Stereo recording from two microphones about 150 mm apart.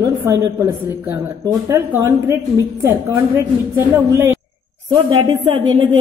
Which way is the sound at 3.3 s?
15° right (ahead or behind).